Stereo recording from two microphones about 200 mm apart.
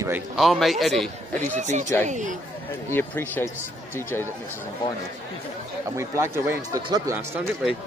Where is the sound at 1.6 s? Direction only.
35° right (ahead or behind).